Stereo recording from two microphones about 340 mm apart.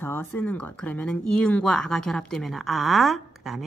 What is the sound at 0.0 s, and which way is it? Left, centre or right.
A woman's voice, centre.